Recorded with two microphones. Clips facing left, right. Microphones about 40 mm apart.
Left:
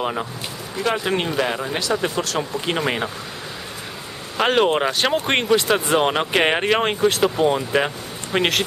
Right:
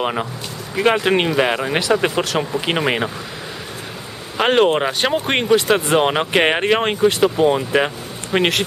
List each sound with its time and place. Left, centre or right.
0.0 s speech: right
0.7 s speech: right
4.4 s speech: centre